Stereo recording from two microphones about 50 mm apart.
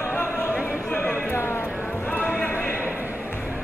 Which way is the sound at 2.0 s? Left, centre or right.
Left.